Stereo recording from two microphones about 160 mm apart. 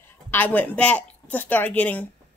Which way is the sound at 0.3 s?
10° left (ahead or behind).